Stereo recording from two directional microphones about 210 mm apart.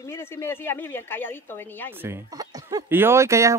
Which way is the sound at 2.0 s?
15° right (ahead or behind).